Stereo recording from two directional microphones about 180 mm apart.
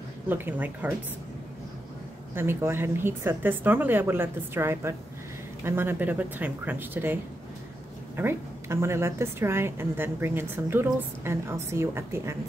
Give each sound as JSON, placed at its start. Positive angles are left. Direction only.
{"t": 0.3, "sound": "a woman's voice", "side_deg": -10}
{"t": 2.3, "sound": "a woman's voice", "side_deg": -15}
{"t": 8.2, "sound": "a woman's voice", "side_deg": -15}